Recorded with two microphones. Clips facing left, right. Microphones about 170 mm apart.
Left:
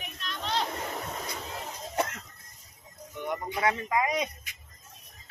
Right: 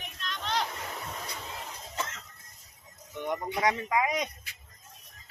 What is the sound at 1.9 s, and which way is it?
Cough, 60° left (ahead or behind).